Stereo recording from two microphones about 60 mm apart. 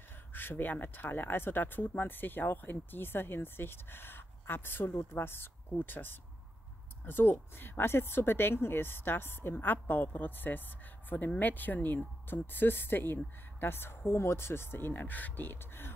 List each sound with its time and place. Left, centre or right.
0.3 s speech: left